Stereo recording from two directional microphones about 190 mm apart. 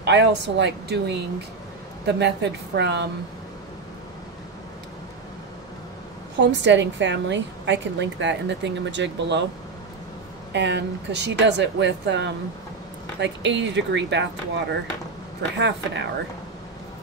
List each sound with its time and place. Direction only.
0.0 s a woman's voice: 65° right (ahead or behind)
6.3 s a woman's voice: 70° right (ahead or behind)
10.5 s a woman's voice: 65° right (ahead or behind)
15.5 s a woman's voice: 65° right (ahead or behind)